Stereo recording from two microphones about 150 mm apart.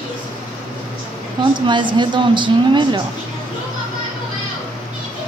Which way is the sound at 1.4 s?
30° right (ahead or behind).